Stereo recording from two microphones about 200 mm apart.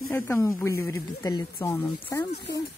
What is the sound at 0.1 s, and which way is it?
Speech, 10° left (ahead or behind).